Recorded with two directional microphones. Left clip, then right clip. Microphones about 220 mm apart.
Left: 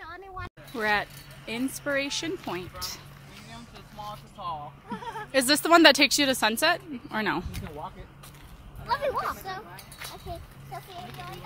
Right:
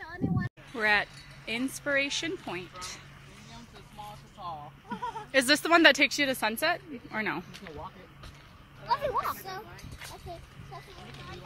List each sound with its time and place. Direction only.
0.7 s speech: centre (ahead or behind)
4.4 s speech: centre (ahead or behind)
8.8 s speech: 50° right (ahead or behind)